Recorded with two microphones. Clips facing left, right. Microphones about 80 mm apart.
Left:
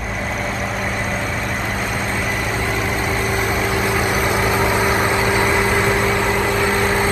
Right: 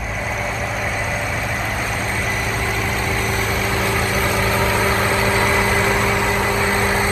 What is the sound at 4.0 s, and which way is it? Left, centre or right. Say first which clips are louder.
Vehicle: left 1 dB; centre.